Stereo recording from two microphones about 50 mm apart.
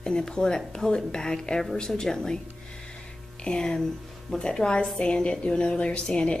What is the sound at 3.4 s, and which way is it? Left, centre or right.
A woman's voice, centre.